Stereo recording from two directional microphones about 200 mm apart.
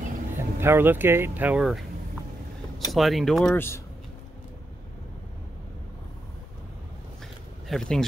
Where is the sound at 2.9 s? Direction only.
Centre (ahead or behind).